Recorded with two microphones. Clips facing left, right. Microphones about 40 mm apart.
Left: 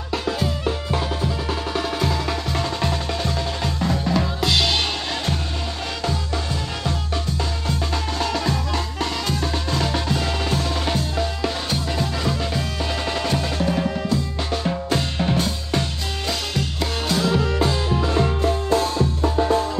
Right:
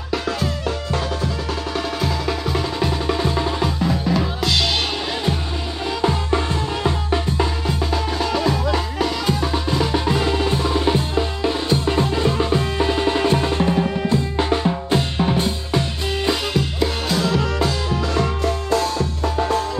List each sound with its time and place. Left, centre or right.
0.1 s music: centre
1.8 s music: centre
6.0 s music: right
7.6 s music: centre
10.0 s percussion: centre
11.0 s music: centre
11.8 s music: right
13.7 s music: centre
14.0 s drum: right
14.9 s drum: centre
16.3 s music: centre
17.3 s music: centre